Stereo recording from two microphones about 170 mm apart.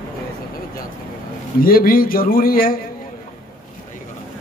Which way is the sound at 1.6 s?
60° left (ahead or behind).